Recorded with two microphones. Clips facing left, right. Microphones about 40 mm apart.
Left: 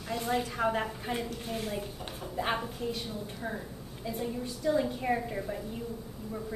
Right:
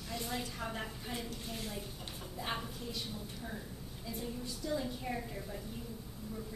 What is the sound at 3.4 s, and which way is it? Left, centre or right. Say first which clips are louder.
A woman's voice: left 7 dB; left.